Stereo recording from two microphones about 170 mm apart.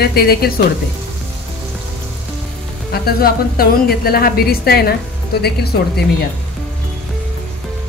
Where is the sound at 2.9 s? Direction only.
60° left (ahead or behind).